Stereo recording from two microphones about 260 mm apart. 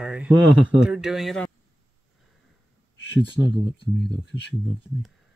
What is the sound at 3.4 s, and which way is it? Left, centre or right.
Speech, centre.